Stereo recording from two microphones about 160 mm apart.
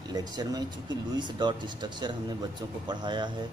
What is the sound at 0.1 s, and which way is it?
A man's voice, 25° right (ahead or behind).